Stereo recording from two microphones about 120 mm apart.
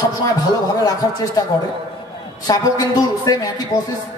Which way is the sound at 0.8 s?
30° left (ahead or behind).